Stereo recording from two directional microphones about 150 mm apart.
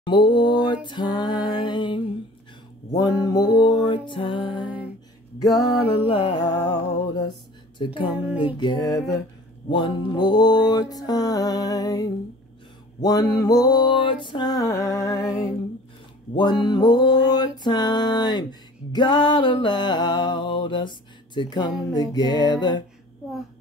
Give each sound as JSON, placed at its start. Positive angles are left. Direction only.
{"t": 0.0, "sound": "music", "side_deg": 30}
{"t": 2.9, "sound": "mantra", "side_deg": 25}
{"t": 3.5, "sound": "music", "side_deg": 30}
{"t": 5.9, "sound": "music", "side_deg": 40}
{"t": 9.7, "sound": "mantra", "side_deg": 30}
{"t": 16.3, "sound": "music", "side_deg": 30}
{"t": 21.4, "sound": "mantra", "side_deg": 30}